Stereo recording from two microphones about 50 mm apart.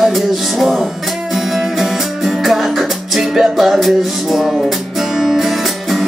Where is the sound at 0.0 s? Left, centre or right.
Centre.